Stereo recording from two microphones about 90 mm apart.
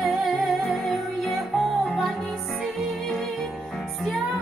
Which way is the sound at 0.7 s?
Centre (ahead or behind).